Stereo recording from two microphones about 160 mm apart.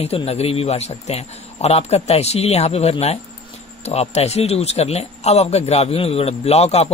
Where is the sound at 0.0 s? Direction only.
40° left (ahead or behind).